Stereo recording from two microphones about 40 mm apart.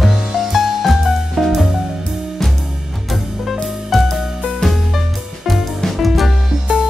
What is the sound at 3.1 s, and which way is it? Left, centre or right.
Music, centre.